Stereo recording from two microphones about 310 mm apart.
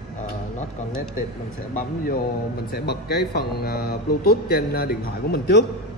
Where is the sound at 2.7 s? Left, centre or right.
Left.